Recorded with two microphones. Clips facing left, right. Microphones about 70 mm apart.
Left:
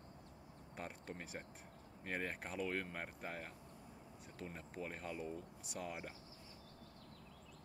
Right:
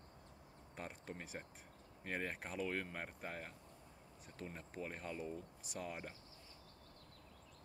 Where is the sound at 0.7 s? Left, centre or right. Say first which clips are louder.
Even; centre.